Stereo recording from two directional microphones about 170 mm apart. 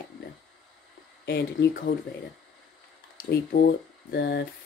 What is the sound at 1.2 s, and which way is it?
Speech, 70° left (ahead or behind).